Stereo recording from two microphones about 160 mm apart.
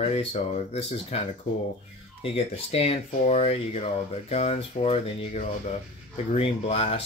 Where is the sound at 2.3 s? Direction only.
40° left (ahead or behind).